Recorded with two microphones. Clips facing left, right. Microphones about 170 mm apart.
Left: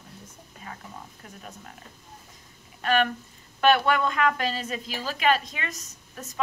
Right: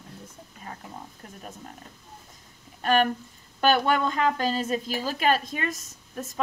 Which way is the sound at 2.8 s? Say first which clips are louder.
Right 2 dB; 40° right (ahead or behind).